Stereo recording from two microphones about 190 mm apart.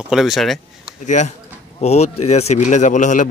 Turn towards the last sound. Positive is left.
turn(degrees=40)  # may be behind; listen again after turning